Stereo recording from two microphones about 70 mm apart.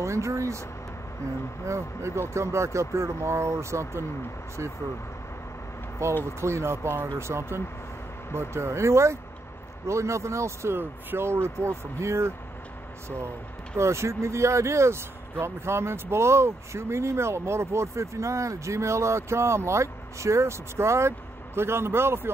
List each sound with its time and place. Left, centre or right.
0.0 s speech: right
1.7 s speech: right
6.0 s speech: right
13.7 s speech: right